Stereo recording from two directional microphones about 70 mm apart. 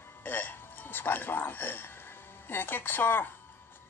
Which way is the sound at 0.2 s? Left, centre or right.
Left.